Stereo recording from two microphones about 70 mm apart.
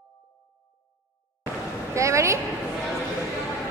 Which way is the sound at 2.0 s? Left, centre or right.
Right.